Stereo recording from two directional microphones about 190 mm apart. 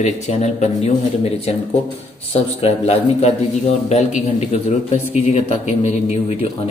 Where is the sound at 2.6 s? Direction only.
35° left (ahead or behind).